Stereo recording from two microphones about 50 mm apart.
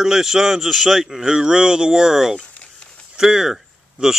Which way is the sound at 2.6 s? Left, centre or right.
Centre.